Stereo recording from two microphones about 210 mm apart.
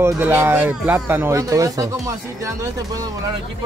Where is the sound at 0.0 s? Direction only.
10° right (ahead or behind).